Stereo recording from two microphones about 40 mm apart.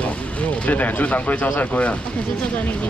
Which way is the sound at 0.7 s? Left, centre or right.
Left.